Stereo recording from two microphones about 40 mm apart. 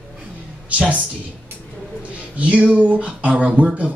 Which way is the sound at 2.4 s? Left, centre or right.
Right.